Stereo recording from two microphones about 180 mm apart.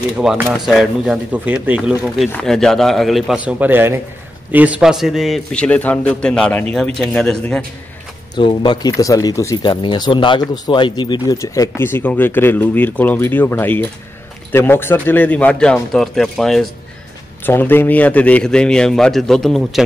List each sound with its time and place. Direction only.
0.2 s speech: 5° right (ahead or behind)
8.4 s speech: 25° left (ahead or behind); by 19.8 s centre (ahead or behind)